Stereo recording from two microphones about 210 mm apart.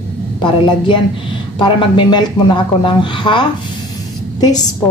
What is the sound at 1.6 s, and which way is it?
A woman's voice, 20° left (ahead or behind).